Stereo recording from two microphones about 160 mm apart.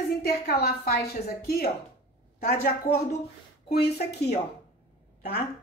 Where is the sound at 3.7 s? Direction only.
85° left.